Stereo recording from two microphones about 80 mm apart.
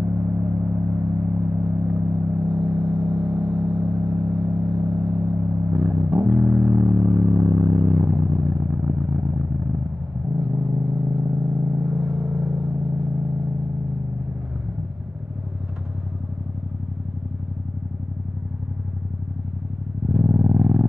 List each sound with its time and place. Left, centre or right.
0.0 s vehicle: right
2.3 s vehicle: centre
20.1 s vehicle: right